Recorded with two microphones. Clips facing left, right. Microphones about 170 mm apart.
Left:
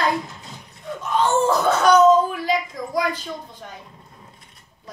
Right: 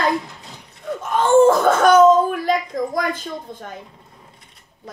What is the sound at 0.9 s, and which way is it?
Speech, 50° right (ahead or behind).